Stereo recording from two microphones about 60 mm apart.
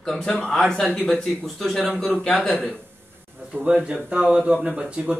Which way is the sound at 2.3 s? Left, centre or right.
Centre.